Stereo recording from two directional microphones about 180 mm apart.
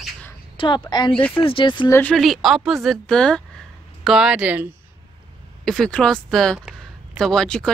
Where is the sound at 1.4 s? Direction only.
30° left (ahead or behind).